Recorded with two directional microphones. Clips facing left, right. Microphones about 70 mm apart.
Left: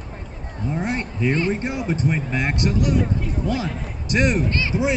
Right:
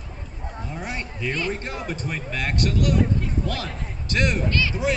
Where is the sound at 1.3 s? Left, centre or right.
Left.